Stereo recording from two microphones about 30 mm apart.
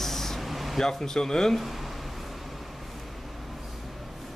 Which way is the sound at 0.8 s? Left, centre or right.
Centre.